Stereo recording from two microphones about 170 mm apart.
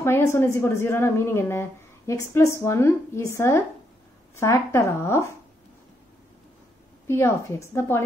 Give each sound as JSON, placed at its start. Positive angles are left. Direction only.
{"t": 0.0, "sound": "speech", "side_deg": 15}
{"t": 7.1, "sound": "speech", "side_deg": 15}